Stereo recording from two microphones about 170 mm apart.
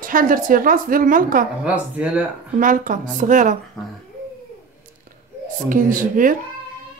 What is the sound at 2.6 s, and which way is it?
Speech, 50° right (ahead or behind).